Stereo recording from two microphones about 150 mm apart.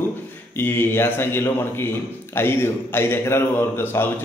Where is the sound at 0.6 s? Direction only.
15° left (ahead or behind).